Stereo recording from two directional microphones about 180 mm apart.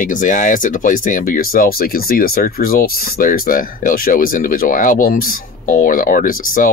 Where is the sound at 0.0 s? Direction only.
45° left (ahead or behind).